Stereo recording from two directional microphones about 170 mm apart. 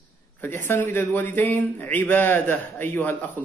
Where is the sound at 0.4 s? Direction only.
10° left (ahead or behind).